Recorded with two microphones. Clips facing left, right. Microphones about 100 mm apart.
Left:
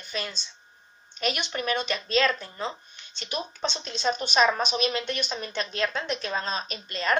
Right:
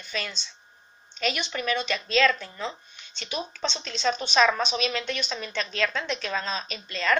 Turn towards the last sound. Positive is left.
turn(degrees=40)  # may be behind; listen again after turning